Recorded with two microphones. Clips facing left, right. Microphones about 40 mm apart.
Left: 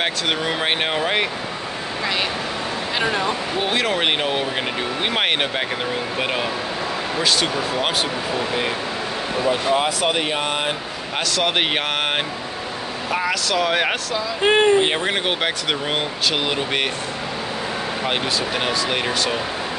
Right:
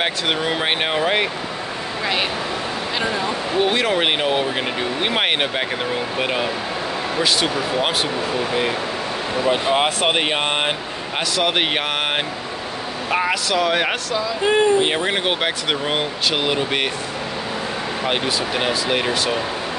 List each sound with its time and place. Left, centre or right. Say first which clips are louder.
0.0 s speech: right 1 dB; centre
3.6 s speech: right 1 dB; centre
9.5 s speech: right 1 dB; right
11.3 s speech: right 1 dB; centre
13.3 s speech: left 1 dB; centre
14.4 s speech: left 1 dB; left
14.9 s speech: right 1 dB; centre
18.0 s speech: right 2 dB; centre